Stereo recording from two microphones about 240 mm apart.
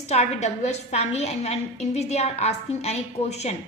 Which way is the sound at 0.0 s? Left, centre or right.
Left.